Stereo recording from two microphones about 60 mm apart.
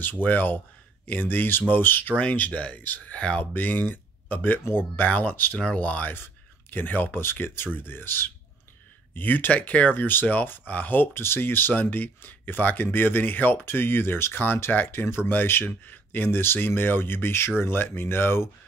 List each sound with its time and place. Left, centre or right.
0.0 s speech: left